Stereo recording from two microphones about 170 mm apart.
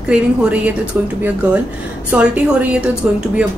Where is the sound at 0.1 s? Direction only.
5° right (ahead or behind).